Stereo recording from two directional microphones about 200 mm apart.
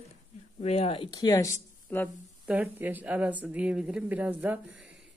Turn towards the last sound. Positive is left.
turn(degrees=-5)  # may be behind; listen again after turning